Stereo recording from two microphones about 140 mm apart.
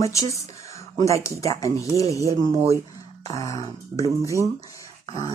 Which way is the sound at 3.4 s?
25° left (ahead or behind).